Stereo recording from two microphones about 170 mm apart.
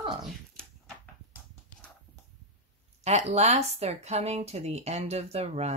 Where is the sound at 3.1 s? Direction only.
40° right (ahead or behind).